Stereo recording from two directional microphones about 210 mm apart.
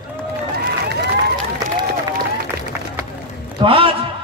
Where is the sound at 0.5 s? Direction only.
50° right (ahead or behind).